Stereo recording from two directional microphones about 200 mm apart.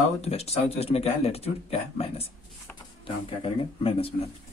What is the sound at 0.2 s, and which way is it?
A man's voice, 30° left (ahead or behind).